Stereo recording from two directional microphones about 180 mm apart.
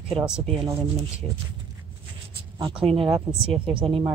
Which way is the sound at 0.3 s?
5° right (ahead or behind).